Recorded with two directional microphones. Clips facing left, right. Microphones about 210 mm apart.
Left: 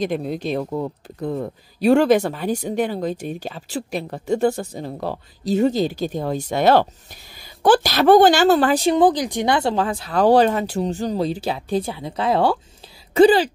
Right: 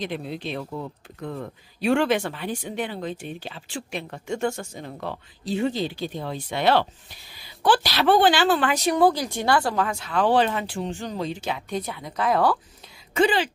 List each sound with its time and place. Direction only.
0.0 s speech: 45° left (ahead or behind)
1.2 s speech: 35° left (ahead or behind)